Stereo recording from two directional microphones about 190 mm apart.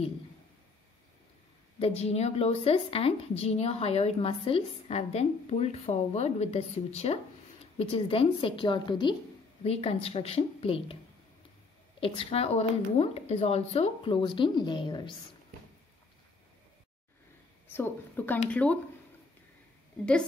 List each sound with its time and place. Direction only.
1.8 s a woman's voice: 35° left (ahead or behind)
12.0 s speech: 30° left (ahead or behind)
17.7 s a woman's voice: 10° left (ahead or behind)